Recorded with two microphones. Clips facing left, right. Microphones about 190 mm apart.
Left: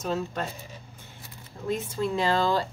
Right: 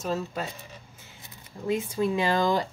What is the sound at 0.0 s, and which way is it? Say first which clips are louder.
Speech: left 1 dB; 5° right (ahead or behind).